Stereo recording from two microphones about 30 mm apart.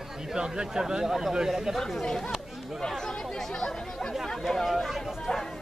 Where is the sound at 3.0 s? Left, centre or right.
Centre.